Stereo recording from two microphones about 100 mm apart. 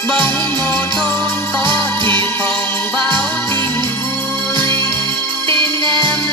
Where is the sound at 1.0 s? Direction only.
25° left (ahead or behind).